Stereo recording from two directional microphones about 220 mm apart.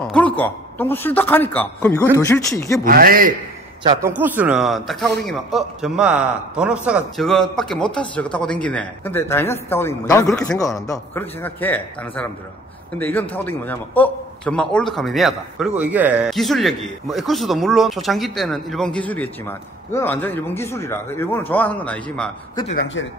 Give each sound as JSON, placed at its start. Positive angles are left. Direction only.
{"t": 0.0, "sound": "a man's voice", "side_deg": 5}
{"t": 2.8, "sound": "a man's voice", "side_deg": -40}
{"t": 3.8, "sound": "a man's voice", "side_deg": -10}
{"t": 10.6, "sound": "a man's voice", "side_deg": 15}